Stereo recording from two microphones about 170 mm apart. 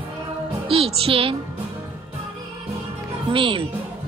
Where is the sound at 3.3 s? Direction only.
30° right (ahead or behind).